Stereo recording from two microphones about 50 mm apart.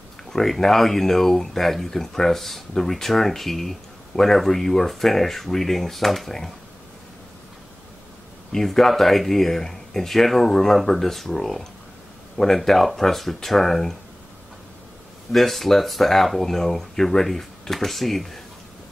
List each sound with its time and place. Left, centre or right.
0.3 s speech: centre
8.5 s speech: centre
15.3 s speech: centre